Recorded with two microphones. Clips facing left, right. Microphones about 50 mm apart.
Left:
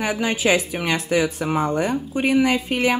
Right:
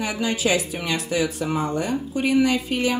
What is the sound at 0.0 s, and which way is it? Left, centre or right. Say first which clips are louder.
Speech: left 3 dB; left.